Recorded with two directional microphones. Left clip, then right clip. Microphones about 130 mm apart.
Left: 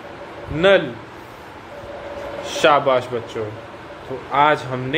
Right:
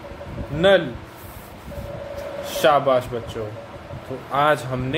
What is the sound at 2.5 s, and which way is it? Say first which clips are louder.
A man's voice: left 2 dB; 10° right (ahead or behind).